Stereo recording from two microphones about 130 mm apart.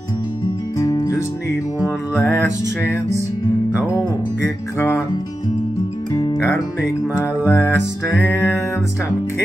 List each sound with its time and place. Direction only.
0.7 s music: 25° left (ahead or behind)
2.2 s music: 15° left (ahead or behind)
4.7 s music: 20° left (ahead or behind)
6.1 s music: 25° left (ahead or behind)